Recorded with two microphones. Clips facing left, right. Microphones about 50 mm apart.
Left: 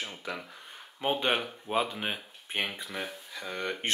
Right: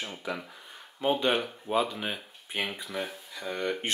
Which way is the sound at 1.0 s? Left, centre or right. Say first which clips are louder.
Right 2 dB; centre.